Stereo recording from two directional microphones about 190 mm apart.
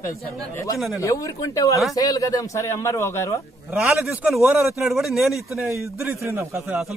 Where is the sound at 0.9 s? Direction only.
15° left (ahead or behind).